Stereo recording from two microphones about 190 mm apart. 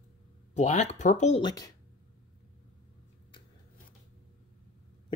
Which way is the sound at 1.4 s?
20° left (ahead or behind).